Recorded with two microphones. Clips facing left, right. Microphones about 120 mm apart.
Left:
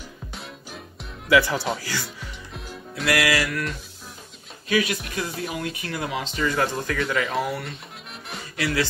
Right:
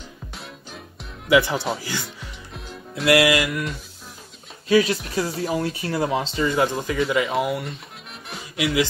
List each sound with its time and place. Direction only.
0.3 s music: centre (ahead or behind)
1.3 s music: 20° right (ahead or behind)
2.5 s music: centre (ahead or behind)
3.1 s music: 20° right (ahead or behind)
4.6 s speech: 30° right (ahead or behind); by 7.0 s 15° right (ahead or behind)
7.0 s speech: 5° right (ahead or behind)
8.5 s speech: 15° right (ahead or behind)